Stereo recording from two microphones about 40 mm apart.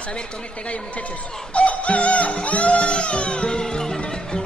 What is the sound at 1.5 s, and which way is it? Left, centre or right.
Music, left.